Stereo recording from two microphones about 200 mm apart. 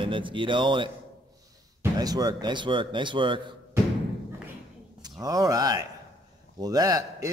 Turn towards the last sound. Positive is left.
turn(degrees=-15)  # may be behind; listen again after turning